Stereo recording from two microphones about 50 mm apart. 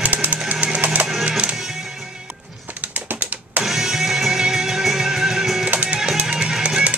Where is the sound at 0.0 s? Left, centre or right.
Right.